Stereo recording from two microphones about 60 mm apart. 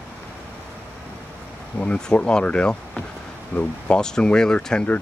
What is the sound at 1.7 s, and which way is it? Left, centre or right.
Speech, left.